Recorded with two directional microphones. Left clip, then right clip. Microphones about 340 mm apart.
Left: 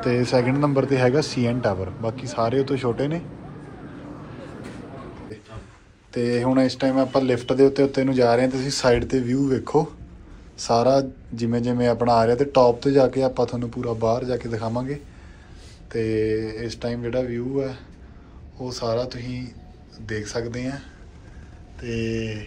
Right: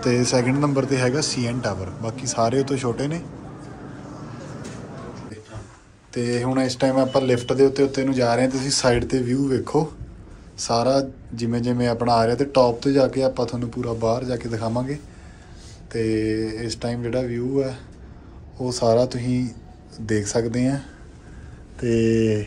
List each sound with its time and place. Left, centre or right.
0.0 s speech: centre
6.1 s speech: centre